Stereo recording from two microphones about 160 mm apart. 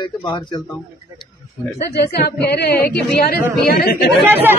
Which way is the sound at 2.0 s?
85° left.